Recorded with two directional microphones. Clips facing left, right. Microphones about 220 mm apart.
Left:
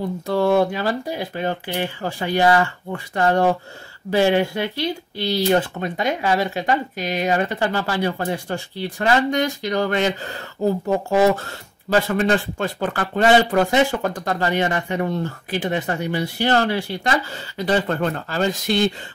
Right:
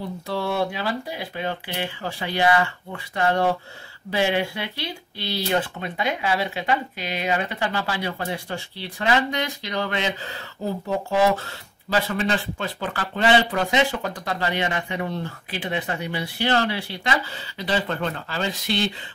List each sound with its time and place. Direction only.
0.3 s speech: 45° left (ahead or behind)